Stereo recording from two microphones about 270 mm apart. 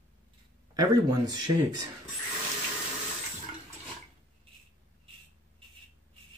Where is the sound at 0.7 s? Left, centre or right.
Centre.